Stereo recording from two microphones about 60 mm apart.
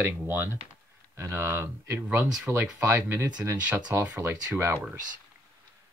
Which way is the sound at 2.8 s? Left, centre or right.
Right.